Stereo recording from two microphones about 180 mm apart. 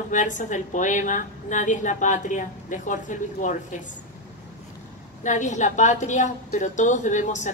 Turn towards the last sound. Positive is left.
turn(degrees=40)  # may be behind; listen again after turning